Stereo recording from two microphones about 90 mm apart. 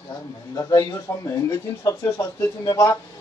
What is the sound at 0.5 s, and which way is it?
A man's voice, 40° left (ahead or behind).